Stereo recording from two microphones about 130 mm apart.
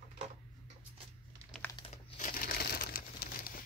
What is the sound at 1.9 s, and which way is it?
Crumpling, 80° left.